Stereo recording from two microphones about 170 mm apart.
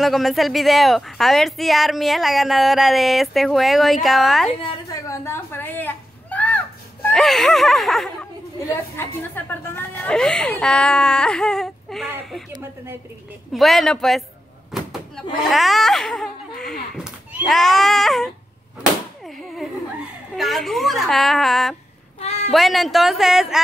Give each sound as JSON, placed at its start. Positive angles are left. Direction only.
{"t": 0.0, "sound": "a woman's voice", "side_deg": 0}
{"t": 4.8, "sound": "a woman's voice", "side_deg": 20}
{"t": 8.6, "sound": "a woman's voice", "side_deg": 15}
{"t": 13.5, "sound": "a woman's voice", "side_deg": 0}
{"t": 14.7, "sound": "slam", "side_deg": 0}
{"t": 15.4, "sound": "speech", "side_deg": 0}
{"t": 16.9, "sound": "neigh", "side_deg": -5}
{"t": 17.6, "sound": "a woman's voice", "side_deg": 0}
{"t": 22.2, "sound": "a sound", "side_deg": 40}
{"t": 22.5, "sound": "a woman's voice", "side_deg": 0}